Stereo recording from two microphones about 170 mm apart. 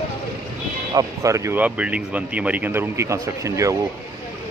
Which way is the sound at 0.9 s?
20° right (ahead or behind).